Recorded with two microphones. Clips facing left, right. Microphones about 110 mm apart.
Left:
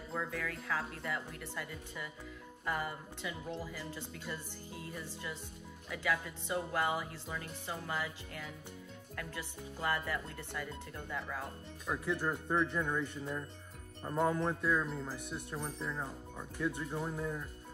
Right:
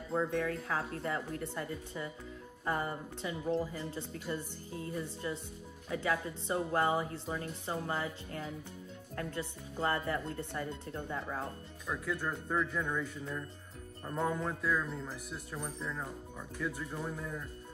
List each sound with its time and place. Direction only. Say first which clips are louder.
0.1 s speech: right 7 dB; 30° right (ahead or behind)
11.9 s speech: left 1 dB; centre (ahead or behind)
17.2 s speech: left 2 dB; 15° left (ahead or behind)